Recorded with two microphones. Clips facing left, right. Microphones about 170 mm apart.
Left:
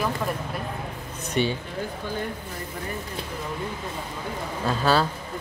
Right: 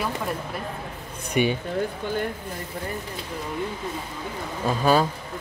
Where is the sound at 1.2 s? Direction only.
10° right (ahead or behind).